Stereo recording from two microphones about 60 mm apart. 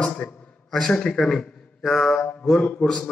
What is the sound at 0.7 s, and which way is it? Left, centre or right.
Speech, centre.